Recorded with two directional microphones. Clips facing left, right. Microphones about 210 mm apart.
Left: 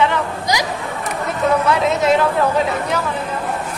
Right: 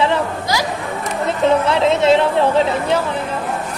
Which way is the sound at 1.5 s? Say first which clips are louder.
Right 1 dB; 25° right (ahead or behind).